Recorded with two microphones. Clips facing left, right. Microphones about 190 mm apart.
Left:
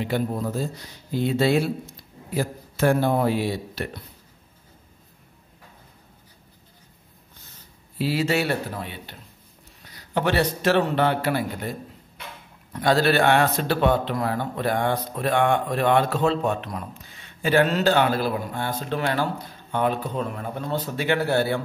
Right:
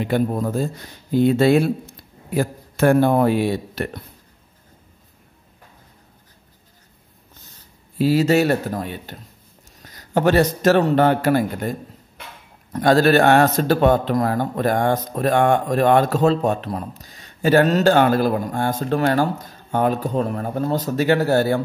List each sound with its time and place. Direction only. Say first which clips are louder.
0.0 s speech: right 5 dB; 50° right (ahead or behind)
8.0 s a man's voice: right 7 dB; 45° right (ahead or behind)
12.7 s speech: right 5 dB; 45° right (ahead or behind)